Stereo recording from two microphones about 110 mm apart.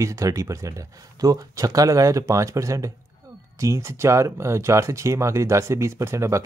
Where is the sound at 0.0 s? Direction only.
30° right (ahead or behind).